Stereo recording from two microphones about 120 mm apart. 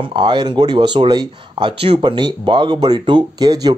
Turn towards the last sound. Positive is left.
turn(degrees=-35)  # may be behind; listen again after turning